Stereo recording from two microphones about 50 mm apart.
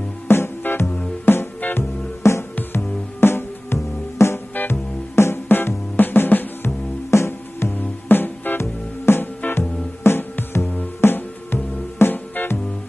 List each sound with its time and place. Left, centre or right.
0.3 s music: left
7.1 s music: left